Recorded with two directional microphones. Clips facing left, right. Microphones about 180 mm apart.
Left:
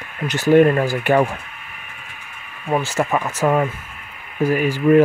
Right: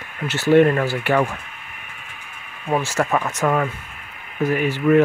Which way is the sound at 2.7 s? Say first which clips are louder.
Left 1 dB; centre (ahead or behind).